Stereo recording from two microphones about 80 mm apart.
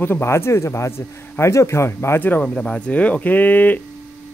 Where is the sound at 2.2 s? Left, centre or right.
Centre.